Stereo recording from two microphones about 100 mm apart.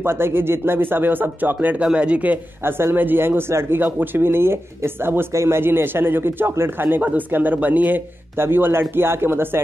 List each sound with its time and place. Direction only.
0.0 s speech: 25° right (ahead or behind)